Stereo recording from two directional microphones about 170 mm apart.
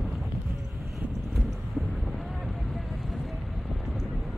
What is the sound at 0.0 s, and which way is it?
Vehicle, centre (ahead or behind).